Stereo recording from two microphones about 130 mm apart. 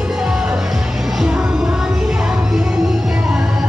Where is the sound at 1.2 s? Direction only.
5° right (ahead or behind).